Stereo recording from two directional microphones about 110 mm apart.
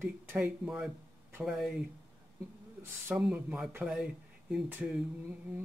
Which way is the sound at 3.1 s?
10° right (ahead or behind).